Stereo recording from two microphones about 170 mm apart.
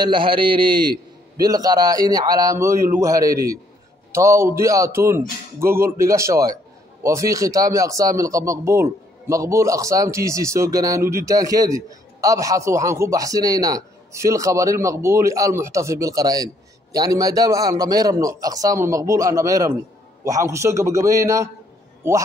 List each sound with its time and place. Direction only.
0.0 s a man's voice: 30° right (ahead or behind)